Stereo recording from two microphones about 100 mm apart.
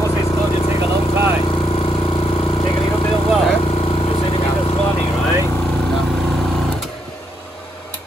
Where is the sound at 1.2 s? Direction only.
65° left (ahead or behind).